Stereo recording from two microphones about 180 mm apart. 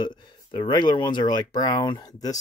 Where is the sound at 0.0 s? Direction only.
25° left (ahead or behind).